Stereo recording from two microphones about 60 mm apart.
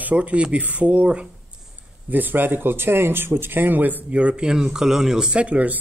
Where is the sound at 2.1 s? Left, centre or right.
Right.